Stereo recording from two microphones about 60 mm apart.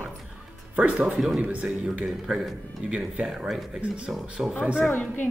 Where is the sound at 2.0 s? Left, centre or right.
Centre.